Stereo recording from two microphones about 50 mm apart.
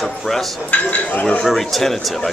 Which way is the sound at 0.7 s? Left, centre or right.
Left.